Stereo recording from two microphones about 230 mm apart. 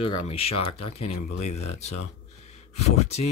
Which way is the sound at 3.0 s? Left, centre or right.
Left.